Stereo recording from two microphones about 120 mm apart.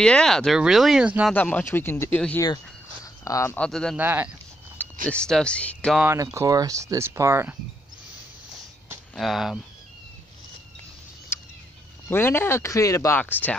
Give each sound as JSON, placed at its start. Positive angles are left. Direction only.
{"t": 0.0, "sound": "speech", "side_deg": 5}
{"t": 1.3, "sound": "speech", "side_deg": 15}
{"t": 3.3, "sound": "speech", "side_deg": 25}
{"t": 3.5, "sound": "speech", "side_deg": 5}
{"t": 3.9, "sound": "speech", "side_deg": -15}
{"t": 4.7, "sound": "speech", "side_deg": 10}
{"t": 6.0, "sound": "speech", "side_deg": -25}
{"t": 9.1, "sound": "speech", "side_deg": 0}
{"t": 11.3, "sound": "a sound", "side_deg": 20}
{"t": 12.1, "sound": "speech", "side_deg": 20}
{"t": 13.2, "sound": "speech", "side_deg": 15}